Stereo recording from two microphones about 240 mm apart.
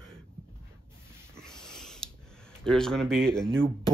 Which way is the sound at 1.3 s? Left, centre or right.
Centre.